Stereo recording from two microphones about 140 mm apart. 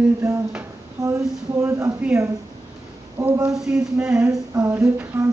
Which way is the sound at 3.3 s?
25° right (ahead or behind).